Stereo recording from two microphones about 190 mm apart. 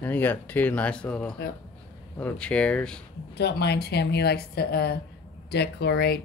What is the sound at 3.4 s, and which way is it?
Speech, 60° left (ahead or behind).